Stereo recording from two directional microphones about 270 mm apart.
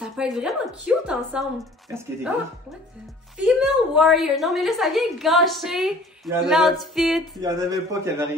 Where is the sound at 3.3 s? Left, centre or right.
Centre.